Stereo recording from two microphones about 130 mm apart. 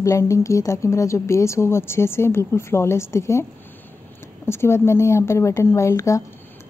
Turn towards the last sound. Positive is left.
turn(degrees=25)  # may be behind; listen again after turning